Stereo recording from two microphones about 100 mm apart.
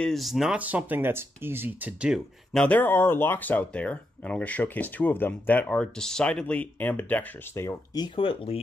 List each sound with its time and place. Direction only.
0.0 s speech: centre (ahead or behind)
0.6 s speech: 15° right (ahead or behind)
2.5 s speech: 10° left (ahead or behind)
7.6 s speech: 30° left (ahead or behind)
8.2 s speech: 65° left (ahead or behind)